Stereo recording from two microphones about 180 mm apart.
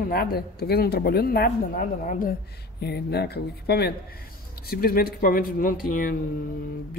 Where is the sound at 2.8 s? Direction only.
65° left (ahead or behind).